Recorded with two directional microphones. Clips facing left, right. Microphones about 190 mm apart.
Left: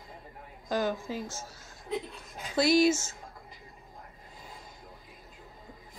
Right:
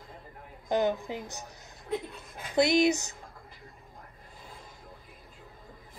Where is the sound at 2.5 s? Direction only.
20° right (ahead or behind).